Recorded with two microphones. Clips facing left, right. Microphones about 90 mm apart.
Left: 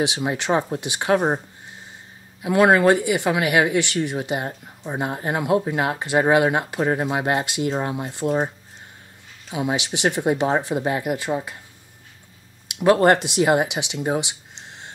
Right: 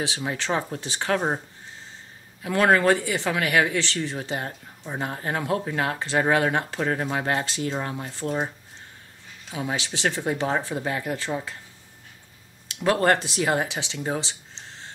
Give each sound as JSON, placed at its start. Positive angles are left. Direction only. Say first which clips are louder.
{"t": 0.0, "sound": "speech", "louder": "left 5 dB", "side_deg": 20}
{"t": 2.4, "sound": "speech", "louder": "left 4 dB", "side_deg": 10}
{"t": 9.5, "sound": "speech", "louder": "left 5 dB", "side_deg": 15}
{"t": 12.6, "sound": "speech", "louder": "left 5 dB", "side_deg": 20}
{"t": 14.0, "sound": "a sound", "louder": "left 5 dB", "side_deg": 15}